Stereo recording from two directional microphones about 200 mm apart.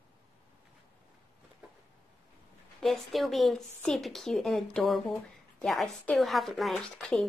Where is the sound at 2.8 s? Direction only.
Centre (ahead or behind).